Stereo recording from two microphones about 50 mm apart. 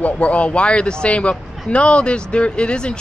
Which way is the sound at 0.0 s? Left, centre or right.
Left.